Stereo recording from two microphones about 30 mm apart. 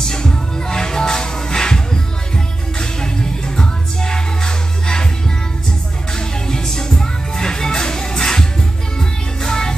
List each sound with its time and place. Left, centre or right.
0.0 s music: left
6.1 s music: left